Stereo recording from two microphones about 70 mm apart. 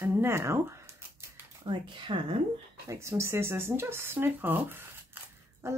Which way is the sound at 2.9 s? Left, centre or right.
Right.